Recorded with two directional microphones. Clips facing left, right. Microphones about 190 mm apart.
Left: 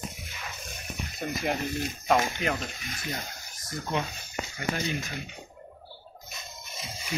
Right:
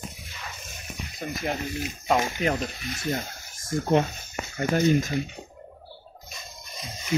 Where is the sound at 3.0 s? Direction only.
45° right (ahead or behind).